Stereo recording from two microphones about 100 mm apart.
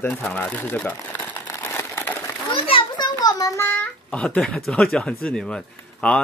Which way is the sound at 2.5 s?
60° left (ahead or behind).